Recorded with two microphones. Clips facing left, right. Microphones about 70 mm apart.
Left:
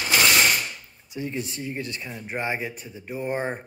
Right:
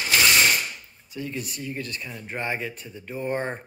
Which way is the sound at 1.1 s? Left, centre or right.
Left.